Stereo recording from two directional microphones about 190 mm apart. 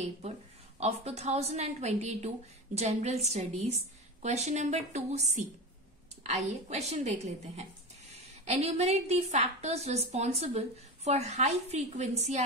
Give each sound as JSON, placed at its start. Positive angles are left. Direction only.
{"t": 0.7, "sound": "a woman's voice", "side_deg": -35}